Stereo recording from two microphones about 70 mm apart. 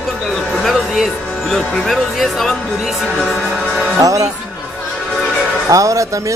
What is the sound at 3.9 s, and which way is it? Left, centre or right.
Music, right.